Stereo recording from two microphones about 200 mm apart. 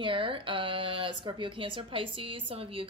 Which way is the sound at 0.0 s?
25° right (ahead or behind).